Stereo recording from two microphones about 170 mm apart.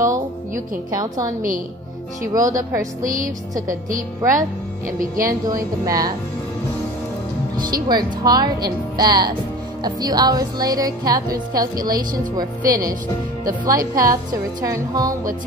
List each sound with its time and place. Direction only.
0.9 s speech: 20° right (ahead or behind)
2.3 s speech: 20° right (ahead or behind)
3.0 s speech: 50° right (ahead or behind)
4.2 s speech: 20° right (ahead or behind)
4.8 s speech: 55° right (ahead or behind)
5.5 s speech: 20° right (ahead or behind)
7.7 s speech: 25° right (ahead or behind)